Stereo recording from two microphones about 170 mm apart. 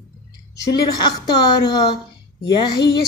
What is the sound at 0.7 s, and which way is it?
A woman's voice, 25° left (ahead or behind).